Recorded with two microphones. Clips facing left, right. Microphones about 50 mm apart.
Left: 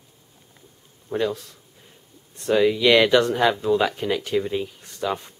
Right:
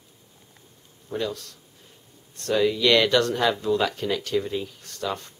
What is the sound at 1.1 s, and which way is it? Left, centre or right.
Speech, centre.